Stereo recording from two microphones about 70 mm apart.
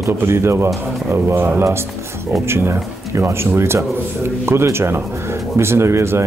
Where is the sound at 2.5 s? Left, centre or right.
Right.